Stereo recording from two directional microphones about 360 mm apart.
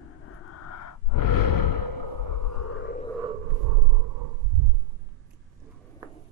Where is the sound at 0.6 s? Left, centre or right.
Left.